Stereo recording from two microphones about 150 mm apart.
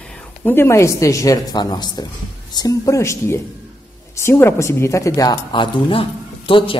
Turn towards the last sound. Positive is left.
turn(degrees=35)  # may be behind; listen again after turning